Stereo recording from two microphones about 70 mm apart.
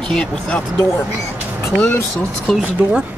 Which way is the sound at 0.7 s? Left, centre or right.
Left.